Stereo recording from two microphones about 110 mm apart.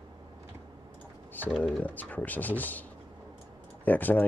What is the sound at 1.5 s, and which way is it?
Speech, centre (ahead or behind).